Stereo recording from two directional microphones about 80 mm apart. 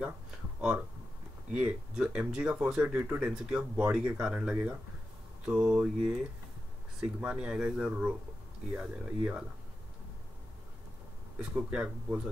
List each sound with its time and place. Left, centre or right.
0.6 s speech: centre
7.2 s speech: centre
11.5 s speech: centre